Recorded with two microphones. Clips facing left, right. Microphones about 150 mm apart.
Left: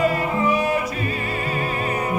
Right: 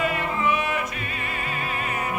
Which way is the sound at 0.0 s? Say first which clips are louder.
Left 5 dB; 35° left (ahead or behind).